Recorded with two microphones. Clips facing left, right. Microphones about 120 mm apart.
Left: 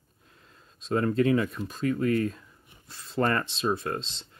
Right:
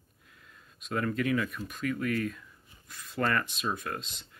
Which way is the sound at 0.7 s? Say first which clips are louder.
Left 6 dB; 30° left (ahead or behind).